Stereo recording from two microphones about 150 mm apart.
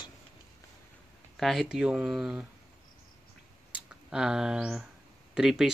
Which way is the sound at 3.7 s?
5° right (ahead or behind).